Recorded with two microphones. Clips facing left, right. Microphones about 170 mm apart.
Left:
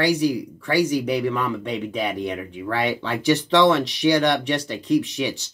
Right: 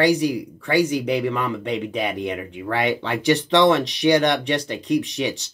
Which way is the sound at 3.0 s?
65° right (ahead or behind).